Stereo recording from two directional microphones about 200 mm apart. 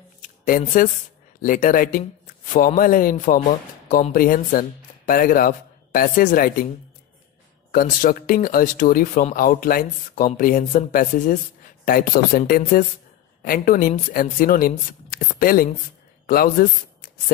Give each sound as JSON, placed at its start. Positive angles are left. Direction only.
{"t": 0.5, "sound": "speech", "side_deg": 45}
{"t": 7.7, "sound": "speech", "side_deg": 45}